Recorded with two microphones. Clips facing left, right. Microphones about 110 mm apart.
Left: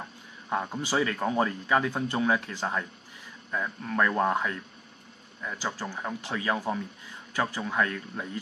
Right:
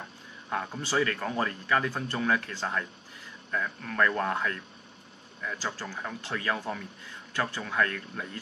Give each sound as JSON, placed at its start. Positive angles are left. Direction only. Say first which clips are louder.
{"t": 0.5, "sound": "speech", "louder": "left 2 dB", "side_deg": 15}